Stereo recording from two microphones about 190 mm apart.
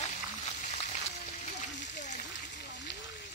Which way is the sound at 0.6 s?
35° left (ahead or behind).